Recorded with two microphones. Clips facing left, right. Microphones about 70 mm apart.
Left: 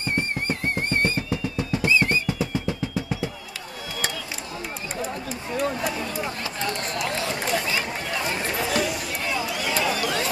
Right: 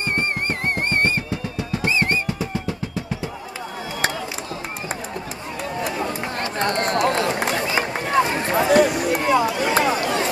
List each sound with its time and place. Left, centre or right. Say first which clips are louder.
0.5 s music: right 3 dB; right
6.4 s run: right 7 dB; right